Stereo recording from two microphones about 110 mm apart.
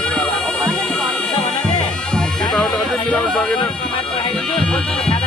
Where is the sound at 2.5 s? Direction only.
5° left (ahead or behind).